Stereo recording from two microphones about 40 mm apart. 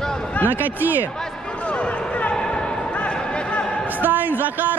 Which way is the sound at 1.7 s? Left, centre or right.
Left.